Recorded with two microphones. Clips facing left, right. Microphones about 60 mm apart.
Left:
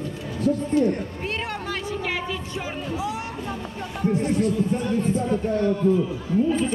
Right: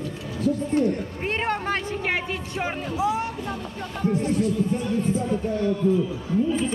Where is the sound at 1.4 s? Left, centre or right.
Right.